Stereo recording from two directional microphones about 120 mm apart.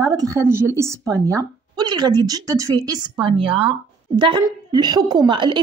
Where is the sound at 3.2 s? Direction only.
50° right (ahead or behind).